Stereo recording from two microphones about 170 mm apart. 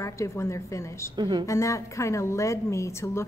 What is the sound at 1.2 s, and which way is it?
Speech, 25° right (ahead or behind).